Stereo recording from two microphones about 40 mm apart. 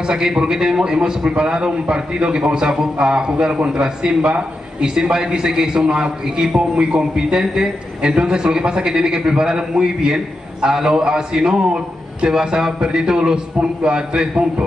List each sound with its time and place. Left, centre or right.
0.0 s a man's voice: centre